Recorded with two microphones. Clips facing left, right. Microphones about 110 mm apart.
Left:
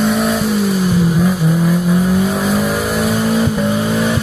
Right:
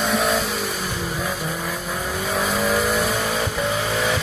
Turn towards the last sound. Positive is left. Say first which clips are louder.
# left 7 dB
turn(degrees=5)  # may be behind; listen again after turning